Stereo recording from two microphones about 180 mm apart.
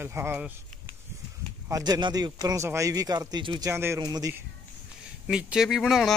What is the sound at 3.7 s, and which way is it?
Speech, 15° right (ahead or behind).